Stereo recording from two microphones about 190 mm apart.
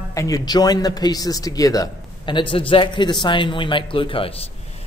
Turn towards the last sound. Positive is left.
turn(degrees=30)  # may be behind; listen again after turning